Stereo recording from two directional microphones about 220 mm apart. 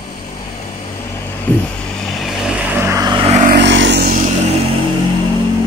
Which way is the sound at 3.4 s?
50° right (ahead or behind).